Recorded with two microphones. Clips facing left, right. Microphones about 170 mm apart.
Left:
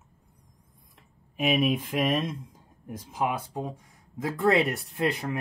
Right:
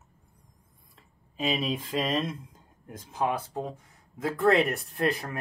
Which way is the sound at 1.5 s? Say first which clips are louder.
Left 6 dB; 20° left (ahead or behind).